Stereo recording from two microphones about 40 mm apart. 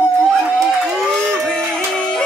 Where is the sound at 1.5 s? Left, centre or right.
Left.